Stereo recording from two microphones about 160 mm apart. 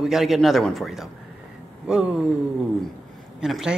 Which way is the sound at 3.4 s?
5° right (ahead or behind).